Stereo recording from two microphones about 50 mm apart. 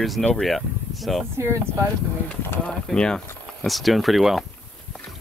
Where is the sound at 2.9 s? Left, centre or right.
Centre.